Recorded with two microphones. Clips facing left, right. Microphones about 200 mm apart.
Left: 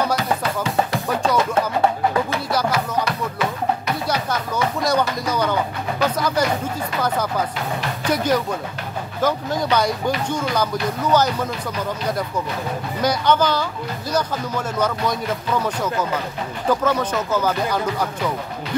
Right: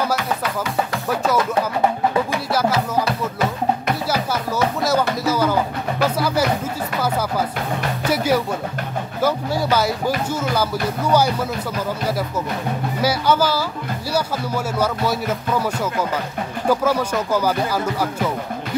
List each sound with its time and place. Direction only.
0.1 s music: 30° left (ahead or behind)
1.2 s speech: 5° right (ahead or behind)
2.7 s music: 25° right (ahead or behind)
4.8 s speech: 5° right (ahead or behind)
13.0 s speech: 5° right (ahead or behind)